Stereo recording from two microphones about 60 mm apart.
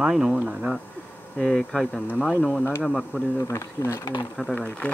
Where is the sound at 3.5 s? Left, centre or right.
Left.